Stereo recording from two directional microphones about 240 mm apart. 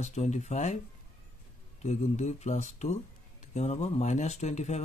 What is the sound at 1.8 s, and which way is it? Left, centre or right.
Speech, left.